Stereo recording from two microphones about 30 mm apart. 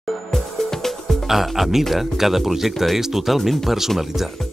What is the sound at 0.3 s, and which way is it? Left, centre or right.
Music, centre.